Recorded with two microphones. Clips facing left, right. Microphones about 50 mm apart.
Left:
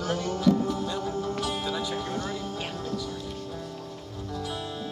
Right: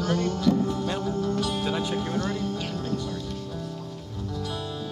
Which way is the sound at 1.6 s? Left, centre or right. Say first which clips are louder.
Right 3 dB; right.